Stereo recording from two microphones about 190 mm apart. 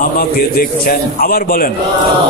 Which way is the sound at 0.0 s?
50° left (ahead or behind).